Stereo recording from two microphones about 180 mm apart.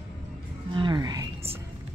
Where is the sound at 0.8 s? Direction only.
25° right (ahead or behind).